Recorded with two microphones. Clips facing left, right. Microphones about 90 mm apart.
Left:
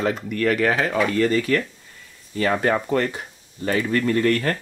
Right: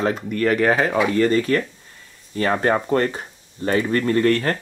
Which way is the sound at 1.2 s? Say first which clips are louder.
Right 2 dB; 35° right (ahead or behind).